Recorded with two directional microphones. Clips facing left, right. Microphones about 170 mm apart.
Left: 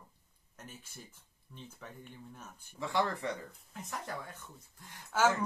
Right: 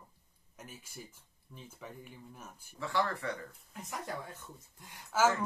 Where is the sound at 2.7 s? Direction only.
15° left (ahead or behind).